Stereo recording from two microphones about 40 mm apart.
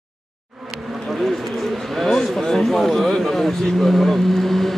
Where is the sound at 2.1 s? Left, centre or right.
Centre.